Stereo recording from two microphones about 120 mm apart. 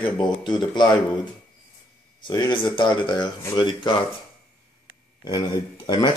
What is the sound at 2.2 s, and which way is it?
Speech, 40° left (ahead or behind).